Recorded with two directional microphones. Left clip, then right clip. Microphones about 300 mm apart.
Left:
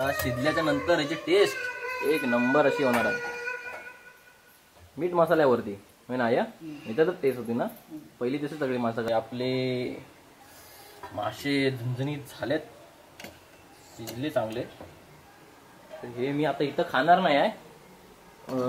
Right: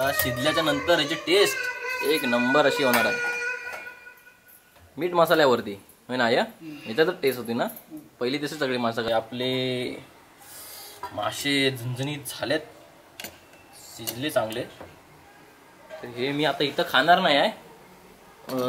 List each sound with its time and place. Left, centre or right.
0.0 s speech: centre
2.5 s a sound: centre
4.9 s speech: centre
8.8 s speech: centre
9.1 s speech: centre
11.1 s speech: centre
14.0 s speech: centre
16.0 s speech: centre